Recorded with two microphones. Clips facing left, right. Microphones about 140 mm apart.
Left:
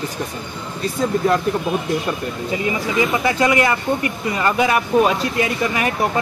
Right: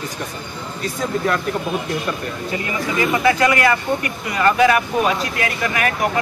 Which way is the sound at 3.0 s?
20° left (ahead or behind).